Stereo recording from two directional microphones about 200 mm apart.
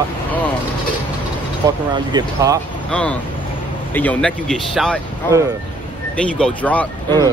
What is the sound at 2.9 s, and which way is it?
Speech, 5° left (ahead or behind).